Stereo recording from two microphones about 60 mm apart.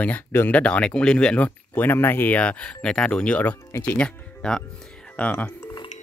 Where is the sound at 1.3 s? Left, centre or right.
Left.